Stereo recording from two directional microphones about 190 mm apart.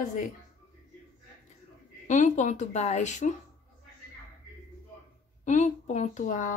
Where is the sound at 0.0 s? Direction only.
45° left (ahead or behind).